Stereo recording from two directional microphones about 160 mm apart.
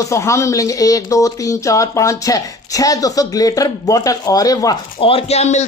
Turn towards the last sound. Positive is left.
turn(degrees=45)  # may be behind; listen again after turning